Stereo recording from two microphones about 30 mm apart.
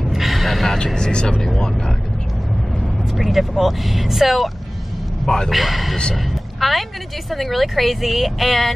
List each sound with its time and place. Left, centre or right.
0.1 s gasp: centre
0.9 s speech: left
3.2 s speech: centre
5.2 s a man's voice: centre
5.5 s speech: centre